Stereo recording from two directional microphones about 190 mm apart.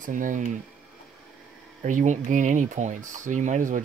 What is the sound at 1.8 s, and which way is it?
Speech, 40° right (ahead or behind).